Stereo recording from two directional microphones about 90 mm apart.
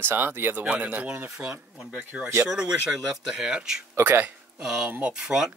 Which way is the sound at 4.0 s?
25° right (ahead or behind).